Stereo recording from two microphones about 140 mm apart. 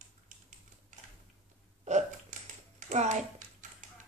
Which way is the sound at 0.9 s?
65° right (ahead or behind).